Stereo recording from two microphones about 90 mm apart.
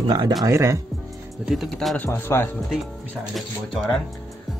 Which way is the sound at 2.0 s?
25° left (ahead or behind).